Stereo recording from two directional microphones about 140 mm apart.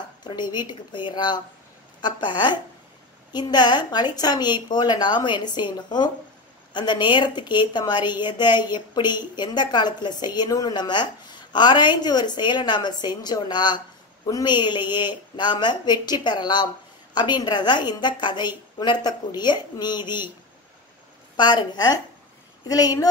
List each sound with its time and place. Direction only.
0.2 s a woman's voice: 30° left (ahead or behind)
21.4 s a woman's voice: 30° left (ahead or behind)